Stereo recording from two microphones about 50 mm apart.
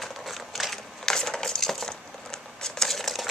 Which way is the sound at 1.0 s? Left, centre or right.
Centre.